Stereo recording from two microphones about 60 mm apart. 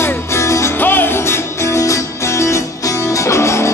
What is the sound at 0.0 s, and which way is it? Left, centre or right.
Music, left.